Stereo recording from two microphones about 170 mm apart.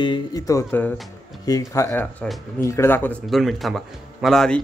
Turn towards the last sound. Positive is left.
turn(degrees=0)  # may be behind; listen again after turning